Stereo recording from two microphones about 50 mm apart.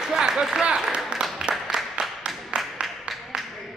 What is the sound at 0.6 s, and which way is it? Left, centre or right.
Speech, right.